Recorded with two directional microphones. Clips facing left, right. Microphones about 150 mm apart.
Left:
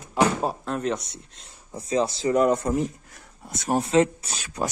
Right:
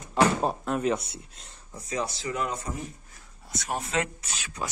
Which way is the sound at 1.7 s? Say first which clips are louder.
Left 8 dB; 30° left (ahead or behind).